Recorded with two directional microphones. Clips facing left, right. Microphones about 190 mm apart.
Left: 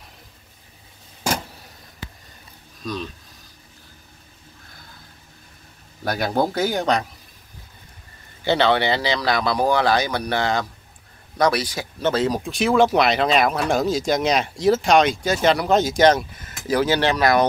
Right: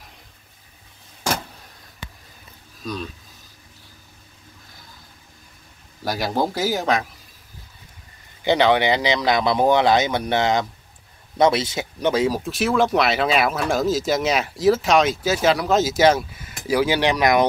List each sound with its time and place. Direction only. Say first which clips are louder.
2.8 s speech: left 1 dB; centre (ahead or behind)
6.0 s speech: left 1 dB; centre (ahead or behind)
8.5 s speech: right 1 dB; 15° right (ahead or behind)
12.1 s speech: right 1 dB; 10° right (ahead or behind)